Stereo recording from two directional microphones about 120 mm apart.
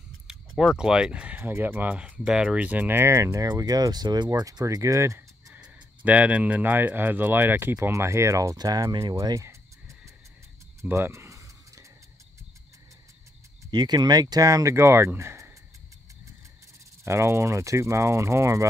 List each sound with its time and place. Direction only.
0.3 s a sound: 5° right (ahead or behind)
0.7 s speech: 5° right (ahead or behind); by 5.2 s 25° right (ahead or behind)
5.5 s speech: 15° right (ahead or behind); by 8.9 s 30° right (ahead or behind)
9.0 s a sound: 25° right (ahead or behind)
13.7 s speech: 35° right (ahead or behind)
17.0 s speech: 25° right (ahead or behind)